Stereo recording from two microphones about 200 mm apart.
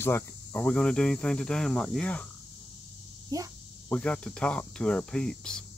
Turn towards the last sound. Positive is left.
turn(degrees=5)  # may be behind; listen again after turning